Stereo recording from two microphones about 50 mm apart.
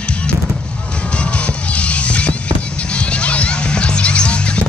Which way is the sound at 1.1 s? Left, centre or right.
Left.